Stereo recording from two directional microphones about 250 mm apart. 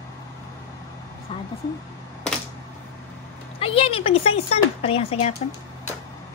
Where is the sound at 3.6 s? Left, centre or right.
Left.